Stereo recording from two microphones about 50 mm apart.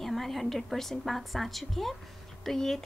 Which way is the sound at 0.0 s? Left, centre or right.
Centre.